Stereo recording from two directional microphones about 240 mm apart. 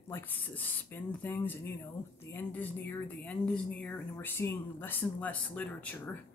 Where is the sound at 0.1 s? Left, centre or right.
Centre.